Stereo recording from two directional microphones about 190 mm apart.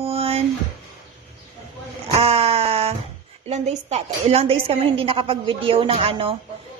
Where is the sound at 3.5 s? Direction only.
35° right (ahead or behind).